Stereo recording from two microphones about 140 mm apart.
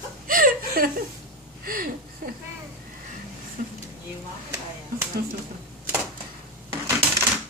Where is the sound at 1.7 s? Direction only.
90° right.